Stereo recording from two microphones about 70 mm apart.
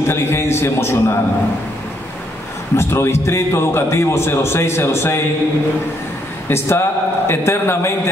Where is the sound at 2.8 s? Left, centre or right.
Left.